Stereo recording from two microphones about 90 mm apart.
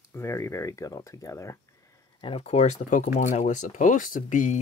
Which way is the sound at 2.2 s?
60° left (ahead or behind).